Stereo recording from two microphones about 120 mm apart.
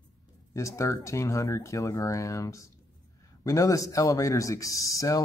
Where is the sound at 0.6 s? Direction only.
25° left (ahead or behind).